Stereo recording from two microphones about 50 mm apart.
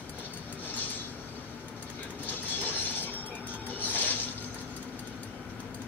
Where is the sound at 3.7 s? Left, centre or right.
Left.